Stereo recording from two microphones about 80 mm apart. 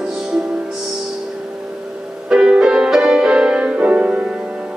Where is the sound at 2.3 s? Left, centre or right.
Centre.